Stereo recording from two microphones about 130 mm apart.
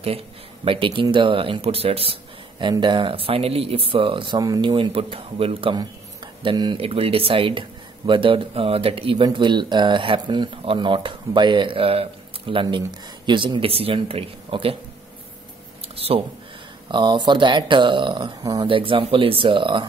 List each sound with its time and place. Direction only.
0.7 s speech: 40° right (ahead or behind)
2.7 s speech: 35° right (ahead or behind)
16.9 s speech: 35° right (ahead or behind)
18.7 s speech: 40° right (ahead or behind)